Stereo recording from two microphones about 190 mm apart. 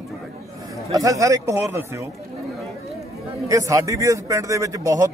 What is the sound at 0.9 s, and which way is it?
A man's voice, 15° right (ahead or behind).